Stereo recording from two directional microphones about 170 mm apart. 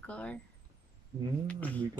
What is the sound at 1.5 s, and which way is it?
Speech, 10° left (ahead or behind).